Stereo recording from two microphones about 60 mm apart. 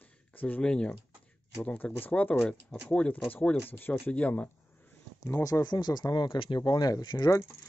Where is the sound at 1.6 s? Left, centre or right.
Left.